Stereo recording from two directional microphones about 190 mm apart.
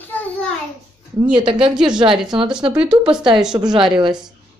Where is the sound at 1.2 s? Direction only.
25° right (ahead or behind).